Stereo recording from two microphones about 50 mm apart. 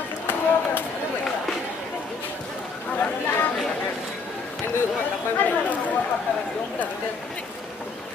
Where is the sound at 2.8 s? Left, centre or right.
Left.